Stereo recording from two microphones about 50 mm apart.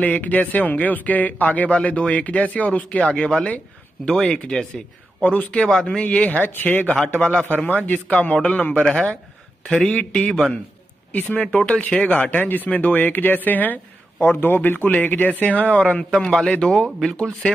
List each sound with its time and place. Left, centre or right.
0.0 s a man's voice: left; by 4.4 s centre
5.2 s speech: left
5.7 s speech: centre; by 7.0 s left
7.1 s speech: left
8.5 s speech: left
9.7 s a man's voice: centre
9.9 s speech: left
11.4 s speech: centre
16.0 s a man's voice: centre